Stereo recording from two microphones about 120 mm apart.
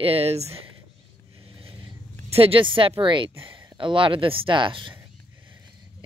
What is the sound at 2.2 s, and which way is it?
Speech, 55° right (ahead or behind).